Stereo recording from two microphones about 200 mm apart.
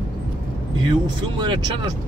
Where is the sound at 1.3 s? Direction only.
20° right (ahead or behind).